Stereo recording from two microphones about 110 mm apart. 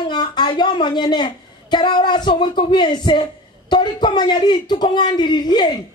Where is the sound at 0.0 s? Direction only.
40° left (ahead or behind).